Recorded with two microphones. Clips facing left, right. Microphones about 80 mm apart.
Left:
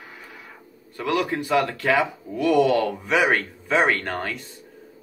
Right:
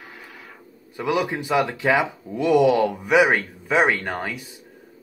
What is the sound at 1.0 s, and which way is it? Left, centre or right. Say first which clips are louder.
Speech: right 1 dB; centre.